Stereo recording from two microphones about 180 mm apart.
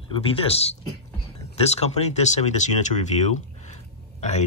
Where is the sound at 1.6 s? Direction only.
35° left (ahead or behind).